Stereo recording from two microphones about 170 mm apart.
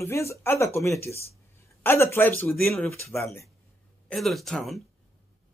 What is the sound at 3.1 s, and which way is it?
Speech, 15° left (ahead or behind).